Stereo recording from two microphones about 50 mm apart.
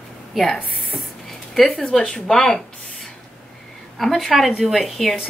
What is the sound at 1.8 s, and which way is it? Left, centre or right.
Speech, centre.